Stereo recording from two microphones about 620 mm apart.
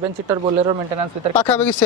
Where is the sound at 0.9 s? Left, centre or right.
Right.